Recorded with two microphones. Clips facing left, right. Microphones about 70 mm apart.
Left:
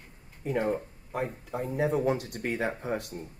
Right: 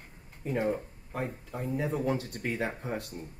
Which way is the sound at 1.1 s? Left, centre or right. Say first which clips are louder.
Left 3 dB; left.